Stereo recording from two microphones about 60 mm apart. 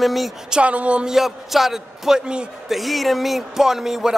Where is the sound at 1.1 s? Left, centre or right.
Centre.